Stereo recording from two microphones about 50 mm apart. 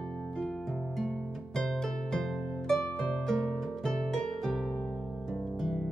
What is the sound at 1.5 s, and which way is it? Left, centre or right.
Harp, centre.